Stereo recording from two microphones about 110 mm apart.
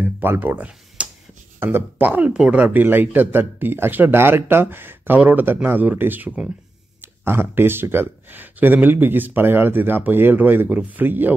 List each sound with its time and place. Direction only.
0.0 s speech: 20° right (ahead or behind)
1.6 s speech: 20° right (ahead or behind)